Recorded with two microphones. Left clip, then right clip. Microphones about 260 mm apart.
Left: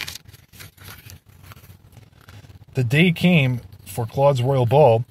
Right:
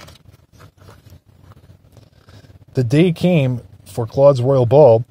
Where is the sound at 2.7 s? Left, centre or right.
Right.